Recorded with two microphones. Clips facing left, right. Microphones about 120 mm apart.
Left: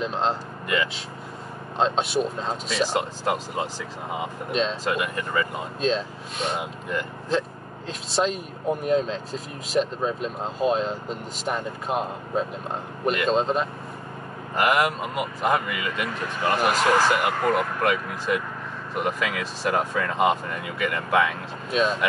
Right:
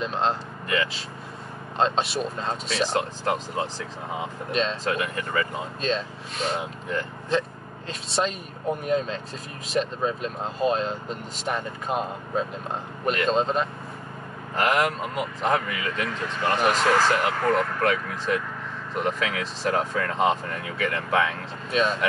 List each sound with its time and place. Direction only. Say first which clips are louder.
0.0 s speech: even; centre (ahead or behind)
1.8 s speech: left 1 dB; centre (ahead or behind)
2.9 s speech: even; 15° left (ahead or behind)
4.5 s speech: left 1 dB; centre (ahead or behind)
14.6 s speech: left 1 dB; 15° left (ahead or behind)
21.6 s speech: left 1 dB; 5° left (ahead or behind)